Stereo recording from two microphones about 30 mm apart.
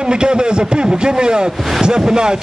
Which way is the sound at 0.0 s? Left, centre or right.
Right.